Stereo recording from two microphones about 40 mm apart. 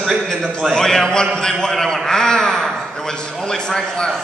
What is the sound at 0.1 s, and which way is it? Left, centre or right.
A man's voice, centre.